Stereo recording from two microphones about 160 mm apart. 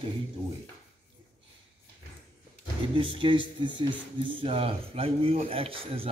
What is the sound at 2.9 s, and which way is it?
Speech, 30° right (ahead or behind).